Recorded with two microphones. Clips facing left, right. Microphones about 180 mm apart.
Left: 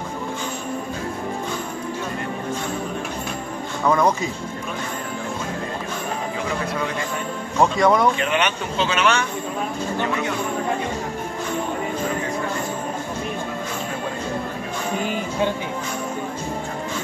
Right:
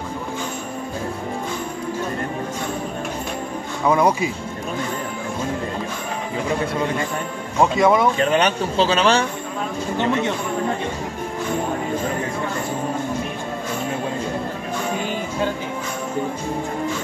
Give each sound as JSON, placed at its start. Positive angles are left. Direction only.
{"t": 3.8, "sound": "speech", "side_deg": -10}
{"t": 7.7, "sound": "speech", "side_deg": 0}
{"t": 8.2, "sound": "speech", "side_deg": -35}